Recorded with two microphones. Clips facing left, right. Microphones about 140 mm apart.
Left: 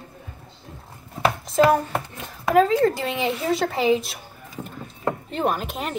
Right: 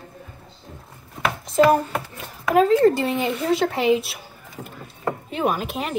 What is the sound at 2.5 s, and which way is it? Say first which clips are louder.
Speech: right 2 dB; centre (ahead or behind).